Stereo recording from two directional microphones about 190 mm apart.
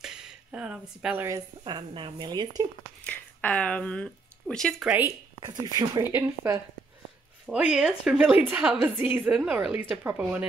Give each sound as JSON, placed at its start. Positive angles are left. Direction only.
{"t": 0.0, "sound": "a sound", "side_deg": -5}
{"t": 1.6, "sound": "speech", "side_deg": -25}
{"t": 3.0, "sound": "a woman's voice", "side_deg": 10}